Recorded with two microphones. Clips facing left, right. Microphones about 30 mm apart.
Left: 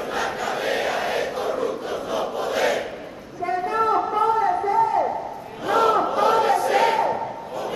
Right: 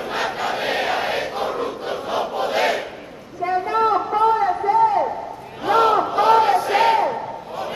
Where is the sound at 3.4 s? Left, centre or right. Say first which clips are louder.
Right 3 dB; right.